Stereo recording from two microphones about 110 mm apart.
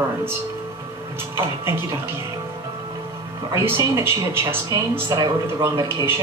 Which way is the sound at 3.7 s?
25° right (ahead or behind).